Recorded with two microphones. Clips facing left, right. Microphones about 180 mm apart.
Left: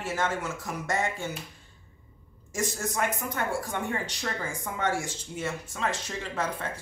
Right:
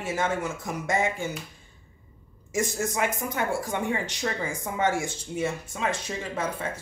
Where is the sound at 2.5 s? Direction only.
10° right (ahead or behind).